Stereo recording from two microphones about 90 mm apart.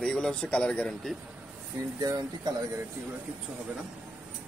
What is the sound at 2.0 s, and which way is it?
Speech, 40° right (ahead or behind).